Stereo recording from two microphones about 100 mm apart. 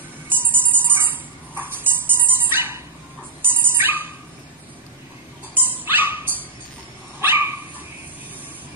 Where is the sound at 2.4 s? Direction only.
20° right (ahead or behind).